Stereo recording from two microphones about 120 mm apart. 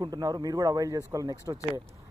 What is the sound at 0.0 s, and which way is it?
A man's voice, 35° right (ahead or behind).